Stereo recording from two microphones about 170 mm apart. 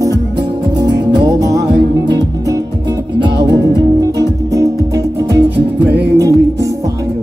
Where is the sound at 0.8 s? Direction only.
90° right.